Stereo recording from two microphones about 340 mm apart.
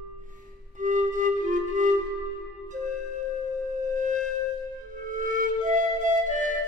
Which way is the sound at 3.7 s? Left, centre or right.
Right.